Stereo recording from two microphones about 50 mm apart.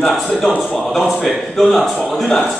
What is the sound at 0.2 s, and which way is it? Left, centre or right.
A man's voice, centre.